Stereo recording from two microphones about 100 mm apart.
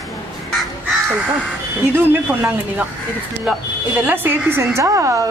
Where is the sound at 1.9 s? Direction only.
20° right (ahead or behind).